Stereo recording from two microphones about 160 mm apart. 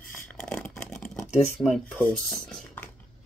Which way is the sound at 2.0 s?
5° left (ahead or behind).